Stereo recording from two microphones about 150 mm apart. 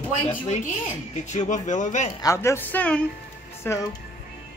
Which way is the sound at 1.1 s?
50° left (ahead or behind).